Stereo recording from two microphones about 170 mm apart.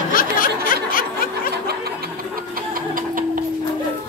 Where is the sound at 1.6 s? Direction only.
65° right (ahead or behind).